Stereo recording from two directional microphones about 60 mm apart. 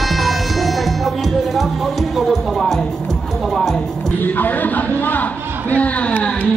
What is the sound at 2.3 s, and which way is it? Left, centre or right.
Music, centre.